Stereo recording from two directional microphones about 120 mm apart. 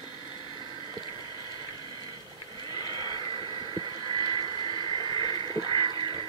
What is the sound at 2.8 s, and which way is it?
Vehicle, 40° right (ahead or behind).